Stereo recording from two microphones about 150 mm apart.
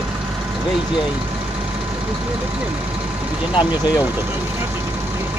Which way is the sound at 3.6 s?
30° left (ahead or behind).